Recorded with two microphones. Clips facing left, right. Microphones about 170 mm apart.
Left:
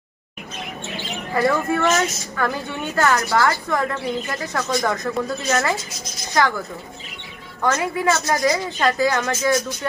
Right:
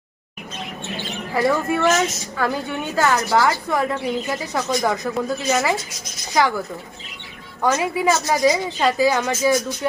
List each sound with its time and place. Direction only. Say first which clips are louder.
1.3 s speech: even; 10° right (ahead or behind)
7.6 s speech: right 1 dB; 15° right (ahead or behind)